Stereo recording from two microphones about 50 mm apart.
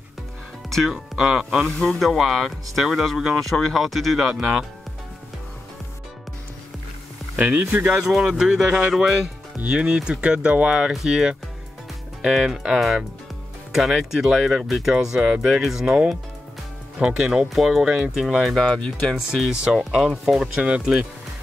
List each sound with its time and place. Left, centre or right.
0.8 s speech: centre
2.0 s speech: centre
3.3 s speech: centre
4.3 s speech: centre
7.3 s speech: right
8.2 s speech: centre
9.6 s speech: right
10.9 s speech: centre
18.6 s speech: centre
19.1 s speech: centre
19.5 s speech: centre
19.8 s speech: centre
20.6 s speech: right